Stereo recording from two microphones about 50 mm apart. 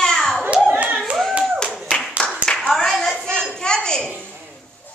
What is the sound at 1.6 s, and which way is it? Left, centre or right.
Clapping, centre.